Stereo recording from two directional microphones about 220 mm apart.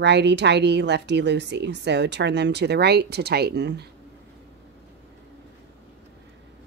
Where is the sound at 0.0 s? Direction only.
50° right (ahead or behind).